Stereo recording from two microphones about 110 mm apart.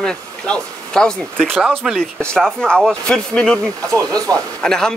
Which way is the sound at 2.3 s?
10° left (ahead or behind).